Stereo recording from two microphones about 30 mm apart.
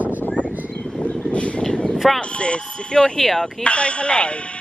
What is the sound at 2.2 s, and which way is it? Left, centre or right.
Speech, left.